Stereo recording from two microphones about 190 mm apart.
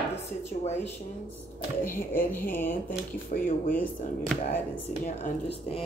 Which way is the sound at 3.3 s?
40° left (ahead or behind).